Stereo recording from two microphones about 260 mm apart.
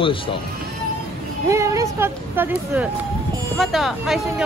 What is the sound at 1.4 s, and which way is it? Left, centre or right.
A man's voice, centre.